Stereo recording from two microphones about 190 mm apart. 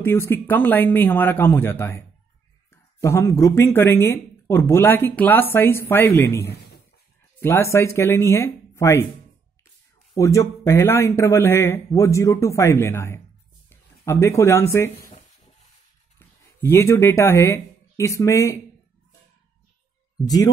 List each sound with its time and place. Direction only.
0.0 s speech: 10° left (ahead or behind)
6.4 s a sound: 60° left (ahead or behind)
7.3 s speech: 15° left (ahead or behind)
10.1 s speech: 15° left (ahead or behind)
16.2 s speech: 10° left (ahead or behind)